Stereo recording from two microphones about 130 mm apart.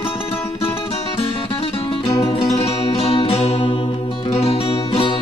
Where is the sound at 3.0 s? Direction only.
45° left (ahead or behind).